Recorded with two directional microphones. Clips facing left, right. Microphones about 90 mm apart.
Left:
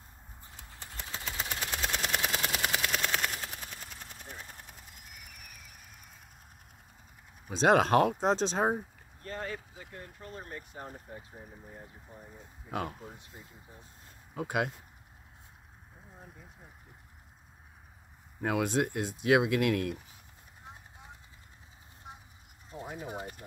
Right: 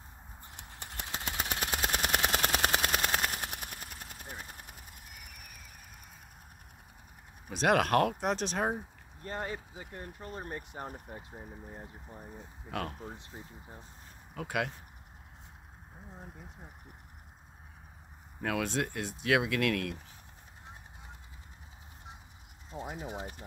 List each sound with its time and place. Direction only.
0.8 s vehicle: 65° right (ahead or behind)
4.3 s vehicle: 10° right (ahead or behind)
7.4 s speech: 20° left (ahead or behind)
9.2 s speech: 20° right (ahead or behind)
14.3 s speech: 20° left (ahead or behind)
18.4 s speech: 20° left (ahead or behind)
22.7 s speech: 25° right (ahead or behind)